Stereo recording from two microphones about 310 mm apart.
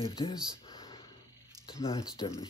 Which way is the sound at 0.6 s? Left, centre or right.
Centre.